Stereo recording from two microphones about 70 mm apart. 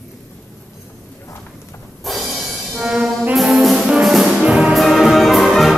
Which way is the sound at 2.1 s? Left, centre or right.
Centre.